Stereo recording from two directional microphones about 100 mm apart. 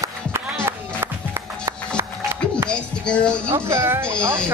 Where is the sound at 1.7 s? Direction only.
25° right (ahead or behind).